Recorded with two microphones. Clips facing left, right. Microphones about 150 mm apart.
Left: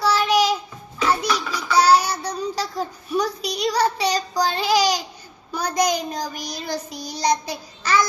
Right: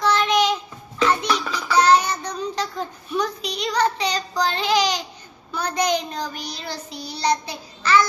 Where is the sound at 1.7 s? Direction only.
10° left (ahead or behind).